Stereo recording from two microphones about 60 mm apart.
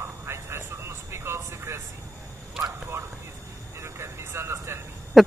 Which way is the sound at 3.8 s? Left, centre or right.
Right.